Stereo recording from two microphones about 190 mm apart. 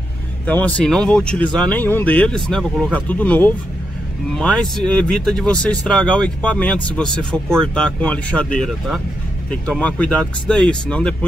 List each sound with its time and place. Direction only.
0.5 s speech: 10° left (ahead or behind)